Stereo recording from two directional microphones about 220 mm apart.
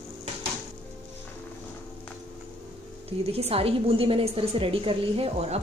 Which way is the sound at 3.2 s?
25° right (ahead or behind).